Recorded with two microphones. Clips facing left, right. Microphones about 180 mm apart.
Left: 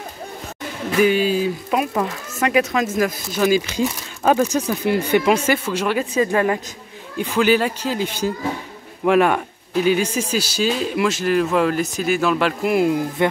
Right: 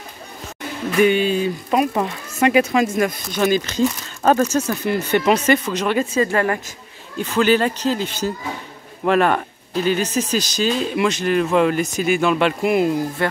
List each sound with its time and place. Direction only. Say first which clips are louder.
1.0 s speech: even; 5° left (ahead or behind)
13.2 s speech: left 4 dB; 20° left (ahead or behind)